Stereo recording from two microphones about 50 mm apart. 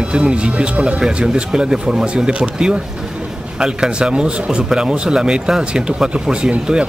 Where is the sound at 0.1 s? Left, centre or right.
Right.